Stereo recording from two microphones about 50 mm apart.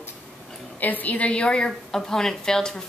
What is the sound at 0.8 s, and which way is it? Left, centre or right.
A woman's voice, left.